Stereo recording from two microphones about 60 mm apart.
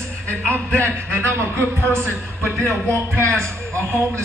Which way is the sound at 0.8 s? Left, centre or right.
Right.